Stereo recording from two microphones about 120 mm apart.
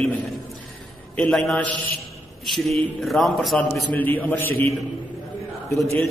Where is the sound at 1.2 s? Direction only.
Centre (ahead or behind).